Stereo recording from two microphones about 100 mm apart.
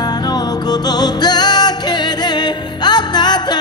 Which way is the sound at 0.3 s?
45° left (ahead or behind).